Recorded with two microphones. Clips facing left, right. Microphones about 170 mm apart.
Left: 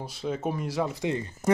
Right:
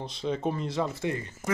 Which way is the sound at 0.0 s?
5° left (ahead or behind).